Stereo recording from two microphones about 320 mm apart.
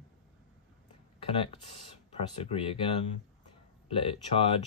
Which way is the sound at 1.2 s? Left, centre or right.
Centre.